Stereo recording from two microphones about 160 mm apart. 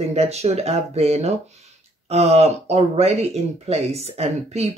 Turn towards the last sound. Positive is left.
turn(degrees=-40)  # may be behind; listen again after turning